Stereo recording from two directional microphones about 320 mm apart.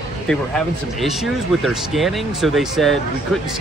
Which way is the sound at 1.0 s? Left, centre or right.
Centre.